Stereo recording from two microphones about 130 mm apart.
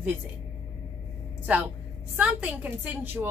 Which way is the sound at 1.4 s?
15° right (ahead or behind).